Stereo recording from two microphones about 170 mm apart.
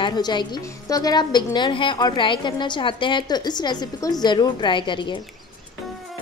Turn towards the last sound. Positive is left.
turn(degrees=30)  # may be behind; listen again after turning